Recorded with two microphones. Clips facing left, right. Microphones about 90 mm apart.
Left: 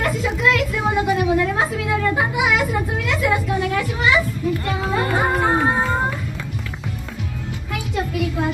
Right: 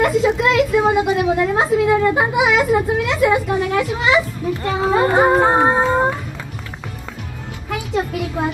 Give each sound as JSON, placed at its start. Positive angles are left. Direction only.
{"t": 0.0, "sound": "a woman's voice", "side_deg": -20}
{"t": 4.8, "sound": "music", "side_deg": -25}